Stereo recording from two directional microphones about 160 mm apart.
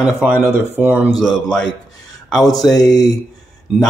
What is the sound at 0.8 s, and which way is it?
Speech, 10° right (ahead or behind).